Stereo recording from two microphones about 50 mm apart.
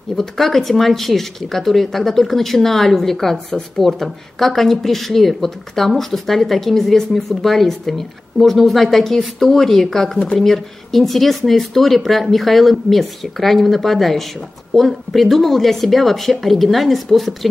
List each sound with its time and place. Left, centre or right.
0.1 s speech: centre
10.1 s speech: centre
10.4 s speech: centre